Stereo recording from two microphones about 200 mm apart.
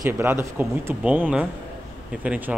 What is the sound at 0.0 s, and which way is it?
Speech, 10° right (ahead or behind).